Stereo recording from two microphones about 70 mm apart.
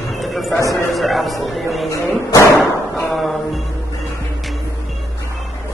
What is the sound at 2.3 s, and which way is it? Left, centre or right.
Slam, left.